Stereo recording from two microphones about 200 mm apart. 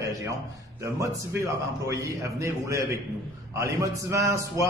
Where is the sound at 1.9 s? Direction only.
15° right (ahead or behind).